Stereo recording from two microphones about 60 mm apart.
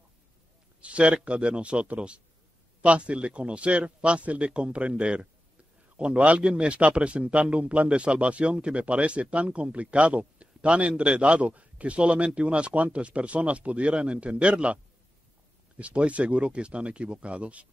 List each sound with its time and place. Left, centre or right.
0.7 s speech: centre
15.8 s speech: right